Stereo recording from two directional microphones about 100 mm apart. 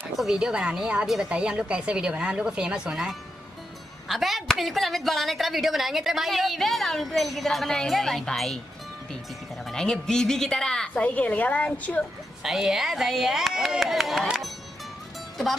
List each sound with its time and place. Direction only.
0.2 s a woman's voice: 5° right (ahead or behind)
9.7 s a woman's voice: 5° left (ahead or behind)
12.4 s a woman's voice: 5° right (ahead or behind)